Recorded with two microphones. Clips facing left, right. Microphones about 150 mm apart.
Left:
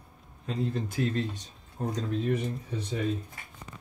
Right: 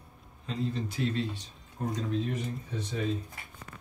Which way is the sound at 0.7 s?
50° left (ahead or behind).